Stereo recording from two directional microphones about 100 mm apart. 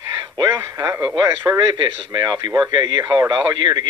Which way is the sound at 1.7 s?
45° right (ahead or behind).